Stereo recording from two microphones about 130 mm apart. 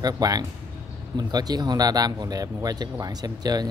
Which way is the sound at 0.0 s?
30° right (ahead or behind).